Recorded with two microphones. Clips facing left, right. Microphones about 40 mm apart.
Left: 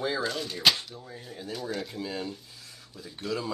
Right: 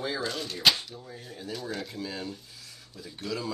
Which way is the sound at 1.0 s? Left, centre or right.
Centre.